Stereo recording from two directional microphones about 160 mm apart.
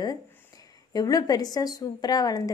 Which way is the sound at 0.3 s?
20° left (ahead or behind).